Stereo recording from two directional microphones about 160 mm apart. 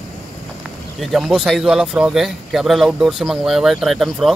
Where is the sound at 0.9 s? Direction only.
Centre (ahead or behind).